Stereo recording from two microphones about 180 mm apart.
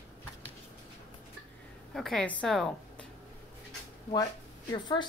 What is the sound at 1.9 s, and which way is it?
Speech, 5° left (ahead or behind).